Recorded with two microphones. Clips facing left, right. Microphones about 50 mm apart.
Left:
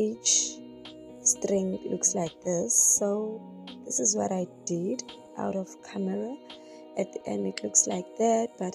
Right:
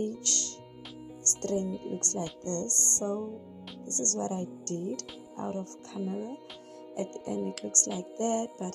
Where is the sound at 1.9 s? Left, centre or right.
Left.